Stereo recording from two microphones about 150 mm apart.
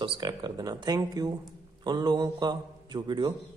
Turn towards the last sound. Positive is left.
turn(degrees=-30)  # may be behind; listen again after turning